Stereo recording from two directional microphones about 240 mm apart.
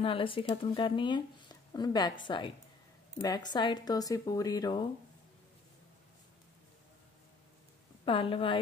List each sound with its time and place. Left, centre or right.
0.0 s speech: left
8.0 s speech: left